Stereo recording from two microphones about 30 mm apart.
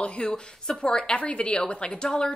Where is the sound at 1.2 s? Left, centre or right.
Left.